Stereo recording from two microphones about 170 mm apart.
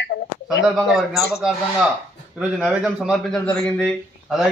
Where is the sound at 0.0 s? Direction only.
90° left.